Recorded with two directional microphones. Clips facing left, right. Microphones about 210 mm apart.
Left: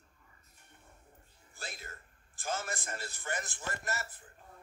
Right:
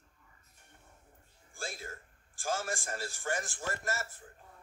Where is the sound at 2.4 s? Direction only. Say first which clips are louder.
Right 3 dB; 45° right (ahead or behind).